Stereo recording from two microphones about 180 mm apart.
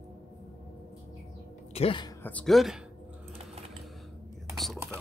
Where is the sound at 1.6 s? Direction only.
35° left (ahead or behind).